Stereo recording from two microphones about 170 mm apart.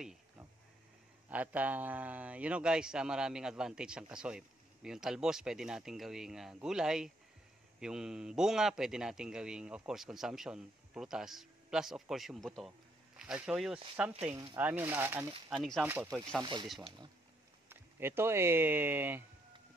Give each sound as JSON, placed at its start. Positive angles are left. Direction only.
{"t": 1.3, "sound": "a man's voice", "side_deg": -10}
{"t": 14.3, "sound": "speech", "side_deg": -25}
{"t": 14.6, "sound": "speech", "side_deg": -10}
{"t": 15.5, "sound": "a man's voice", "side_deg": 0}
{"t": 17.6, "sound": "speech", "side_deg": -15}